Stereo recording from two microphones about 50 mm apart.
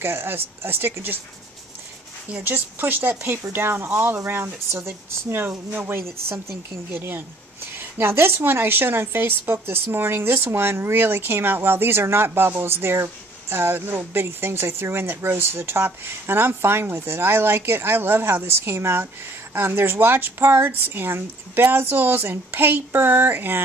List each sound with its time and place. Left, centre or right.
0.0 s a woman's voice: right
2.4 s a woman's voice: right